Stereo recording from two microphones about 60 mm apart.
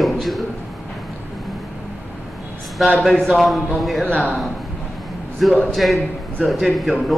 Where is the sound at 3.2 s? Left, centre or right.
Centre.